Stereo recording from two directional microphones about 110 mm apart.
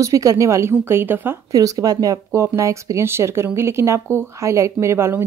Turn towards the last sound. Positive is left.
turn(degrees=-25)  # may be behind; listen again after turning